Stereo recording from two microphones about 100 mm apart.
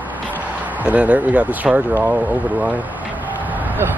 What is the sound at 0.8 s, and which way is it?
Speech, 15° right (ahead or behind).